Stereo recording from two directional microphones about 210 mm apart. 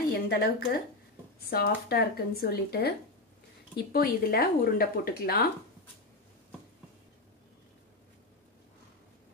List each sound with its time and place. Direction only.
0.3 s speech: 50° left (ahead or behind)